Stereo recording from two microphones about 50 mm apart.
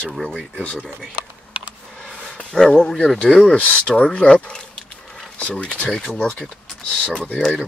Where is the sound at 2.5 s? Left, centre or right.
Centre.